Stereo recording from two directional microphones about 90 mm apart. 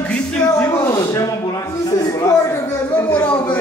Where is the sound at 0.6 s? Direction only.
30° left (ahead or behind).